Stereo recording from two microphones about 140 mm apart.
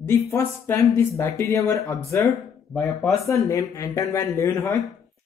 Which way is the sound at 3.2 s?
20° left (ahead or behind).